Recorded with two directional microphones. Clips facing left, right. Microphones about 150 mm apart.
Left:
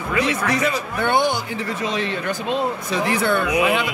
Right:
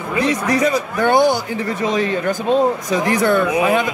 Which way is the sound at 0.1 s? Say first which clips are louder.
Right 3 dB; 35° right (ahead or behind).